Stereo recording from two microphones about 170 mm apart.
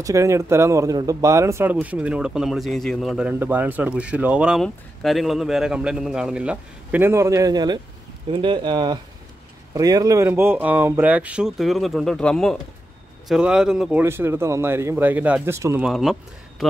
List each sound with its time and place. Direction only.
0.0 s speech: 20° right (ahead or behind)
14.0 s speech: 15° right (ahead or behind)
15.9 s speech: centre (ahead or behind)